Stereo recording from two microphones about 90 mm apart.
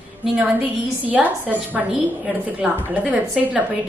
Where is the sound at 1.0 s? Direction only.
15° right (ahead or behind).